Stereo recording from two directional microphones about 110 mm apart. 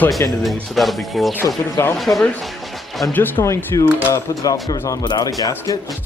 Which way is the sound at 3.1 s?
20° left (ahead or behind).